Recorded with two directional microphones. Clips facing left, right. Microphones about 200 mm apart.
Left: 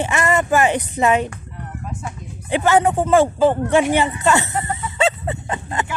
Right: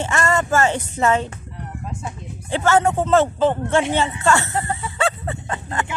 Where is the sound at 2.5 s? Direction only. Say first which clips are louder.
Left 2 dB; 15° left (ahead or behind).